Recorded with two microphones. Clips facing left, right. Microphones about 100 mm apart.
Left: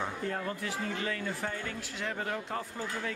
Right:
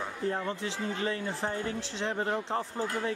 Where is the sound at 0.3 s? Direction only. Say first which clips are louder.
Right 2 dB; 25° right (ahead or behind).